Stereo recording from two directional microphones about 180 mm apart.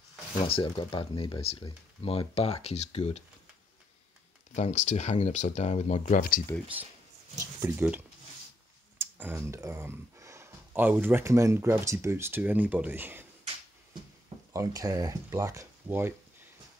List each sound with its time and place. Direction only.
0.5 s speech: 30° left (ahead or behind)
4.6 s speech: 40° left (ahead or behind)
7.6 s speech: 10° right (ahead or behind)
14.5 s speech: 20° right (ahead or behind)